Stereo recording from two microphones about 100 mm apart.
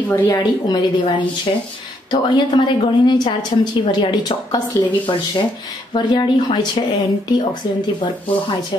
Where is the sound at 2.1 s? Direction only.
50° left (ahead or behind).